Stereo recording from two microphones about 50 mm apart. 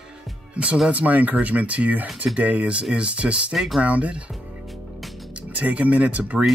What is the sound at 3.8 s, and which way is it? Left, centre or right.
Speech, right.